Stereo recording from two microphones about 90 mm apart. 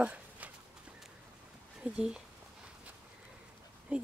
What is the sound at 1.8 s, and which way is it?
Speech, 10° right (ahead or behind).